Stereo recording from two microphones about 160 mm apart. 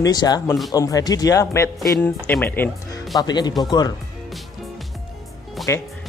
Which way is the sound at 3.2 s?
25° left (ahead or behind).